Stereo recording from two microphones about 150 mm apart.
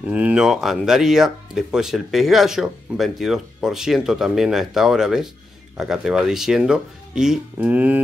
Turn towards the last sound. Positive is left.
turn(degrees=-10)  # may be behind; listen again after turning